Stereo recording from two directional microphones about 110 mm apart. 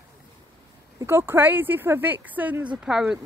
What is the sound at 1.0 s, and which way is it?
Speech, 25° right (ahead or behind).